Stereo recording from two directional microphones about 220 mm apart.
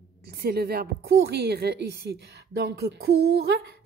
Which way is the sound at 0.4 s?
45° right (ahead or behind).